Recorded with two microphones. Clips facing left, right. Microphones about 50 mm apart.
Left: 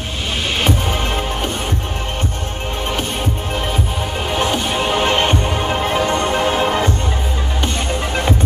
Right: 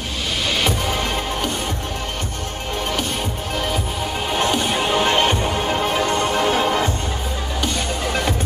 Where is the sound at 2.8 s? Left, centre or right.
Left.